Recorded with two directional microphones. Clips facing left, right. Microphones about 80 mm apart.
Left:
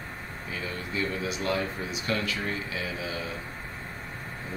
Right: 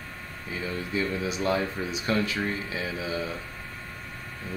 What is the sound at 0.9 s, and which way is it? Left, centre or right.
Speech, right.